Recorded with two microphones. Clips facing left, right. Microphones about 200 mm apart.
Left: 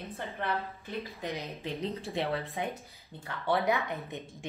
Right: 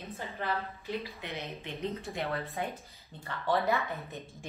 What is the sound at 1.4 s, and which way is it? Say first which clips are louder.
Speech: left 2 dB; 35° left (ahead or behind).